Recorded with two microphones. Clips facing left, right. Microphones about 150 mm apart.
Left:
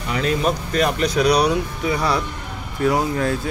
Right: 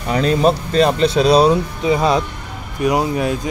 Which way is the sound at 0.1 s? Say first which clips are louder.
Right 6 dB; 30° right (ahead or behind).